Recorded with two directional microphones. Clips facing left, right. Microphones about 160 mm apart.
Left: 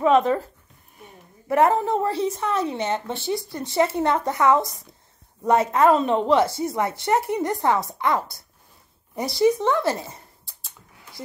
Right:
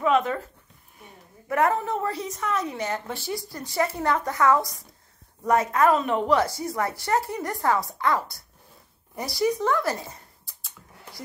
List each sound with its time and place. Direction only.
0.0 s speech: 30° left (ahead or behind)
1.5 s a woman's voice: 30° left (ahead or behind)